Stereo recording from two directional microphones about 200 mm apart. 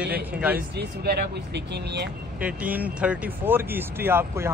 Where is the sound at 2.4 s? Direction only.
5° right (ahead or behind).